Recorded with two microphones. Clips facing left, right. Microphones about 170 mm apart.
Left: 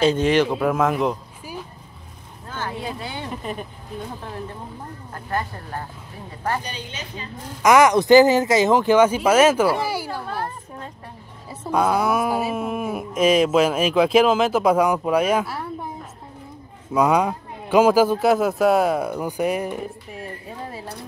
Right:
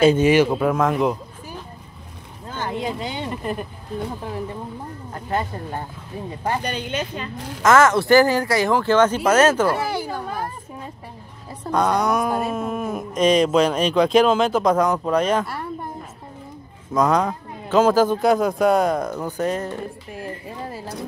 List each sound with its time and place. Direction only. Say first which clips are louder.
0.0 s a man's voice: right 3 dB; 10° right (ahead or behind)
2.5 s speech: right 3 dB; 15° right (ahead or behind)
3.3 s speech: right 2 dB; centre (ahead or behind)
5.1 s speech: right 2 dB; 20° right (ahead or behind)
6.6 s a woman's voice: right 8 dB; 60° right (ahead or behind)
7.6 s speech: left 1 dB; 15° left (ahead or behind)
10.2 s a woman's voice: even; 10° right (ahead or behind)
11.6 s speech: even; 5° left (ahead or behind)
16.9 s speech: left 1 dB; 10° left (ahead or behind)
20.1 s speech: right 2 dB; centre (ahead or behind)